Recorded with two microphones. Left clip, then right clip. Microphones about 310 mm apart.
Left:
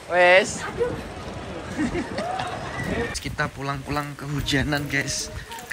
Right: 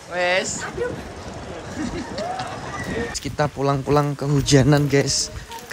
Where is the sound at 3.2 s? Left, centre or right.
Centre.